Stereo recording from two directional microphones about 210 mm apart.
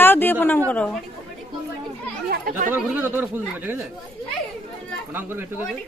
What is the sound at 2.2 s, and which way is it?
Chatter, 45° right (ahead or behind).